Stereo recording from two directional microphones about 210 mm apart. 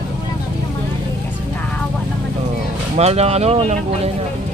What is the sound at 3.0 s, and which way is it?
Speech, 30° right (ahead or behind).